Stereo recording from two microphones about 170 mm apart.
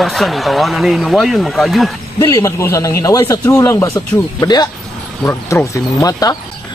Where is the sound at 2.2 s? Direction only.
15° left (ahead or behind).